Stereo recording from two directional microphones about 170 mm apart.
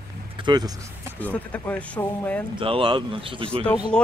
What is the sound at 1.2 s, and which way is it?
Speech, 10° left (ahead or behind).